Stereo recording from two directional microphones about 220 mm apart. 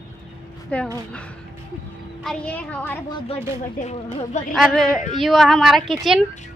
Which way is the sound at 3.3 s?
30° left (ahead or behind).